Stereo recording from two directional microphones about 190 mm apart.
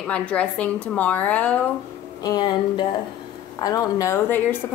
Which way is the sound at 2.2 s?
20° left (ahead or behind).